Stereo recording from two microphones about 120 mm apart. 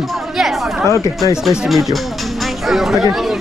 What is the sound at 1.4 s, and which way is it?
Speech, 5° right (ahead or behind).